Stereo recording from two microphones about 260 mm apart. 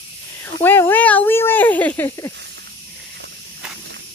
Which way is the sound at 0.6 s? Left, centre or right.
Centre.